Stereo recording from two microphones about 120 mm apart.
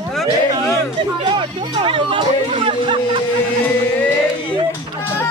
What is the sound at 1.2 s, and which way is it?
Music, 40° right (ahead or behind).